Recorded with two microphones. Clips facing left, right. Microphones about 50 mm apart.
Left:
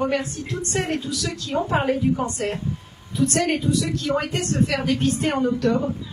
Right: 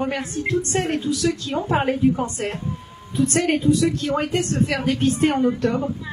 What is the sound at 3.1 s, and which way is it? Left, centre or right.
Speech, right.